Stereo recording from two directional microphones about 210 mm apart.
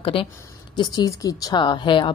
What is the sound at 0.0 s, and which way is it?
A woman's voice, 25° left (ahead or behind).